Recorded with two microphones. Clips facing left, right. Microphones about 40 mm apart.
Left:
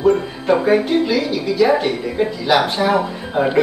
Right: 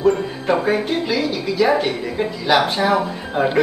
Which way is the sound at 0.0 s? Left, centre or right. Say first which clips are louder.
Left 2 dB; centre.